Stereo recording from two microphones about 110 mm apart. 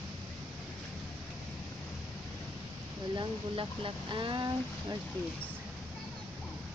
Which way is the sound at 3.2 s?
50° right (ahead or behind).